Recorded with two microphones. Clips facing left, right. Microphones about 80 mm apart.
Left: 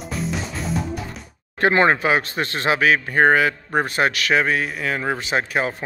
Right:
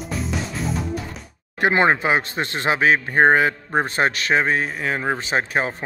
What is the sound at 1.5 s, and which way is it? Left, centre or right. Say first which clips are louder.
A man's voice: left 1 dB; centre.